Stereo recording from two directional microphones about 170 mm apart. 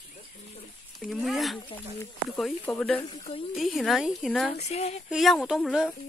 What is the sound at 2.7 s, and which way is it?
A woman's voice, 5° left (ahead or behind).